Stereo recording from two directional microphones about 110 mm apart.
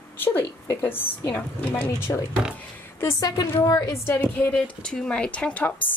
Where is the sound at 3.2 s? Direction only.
35° left (ahead or behind).